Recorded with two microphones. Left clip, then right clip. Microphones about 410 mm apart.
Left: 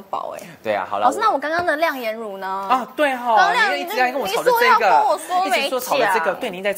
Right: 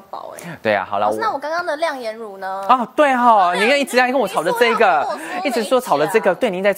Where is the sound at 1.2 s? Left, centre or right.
Left.